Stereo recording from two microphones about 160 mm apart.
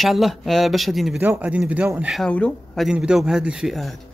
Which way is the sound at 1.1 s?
10° right (ahead or behind).